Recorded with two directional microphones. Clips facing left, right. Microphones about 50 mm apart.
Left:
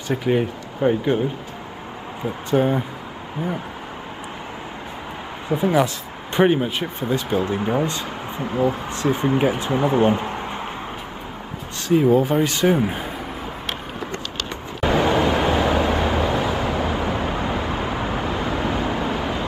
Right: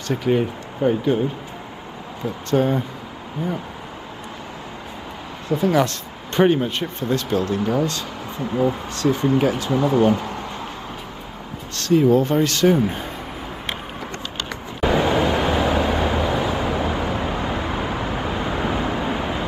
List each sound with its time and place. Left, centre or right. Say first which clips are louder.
0.1 s speech: even; centre
2.2 s speech: even; centre
5.5 s speech: even; centre
11.8 s speech: right 1 dB; centre
14.8 s vehicle: even; centre
18.2 s vehicle: even; centre